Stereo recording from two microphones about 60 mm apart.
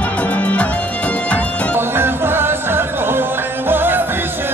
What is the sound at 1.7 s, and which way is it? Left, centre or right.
Music, right.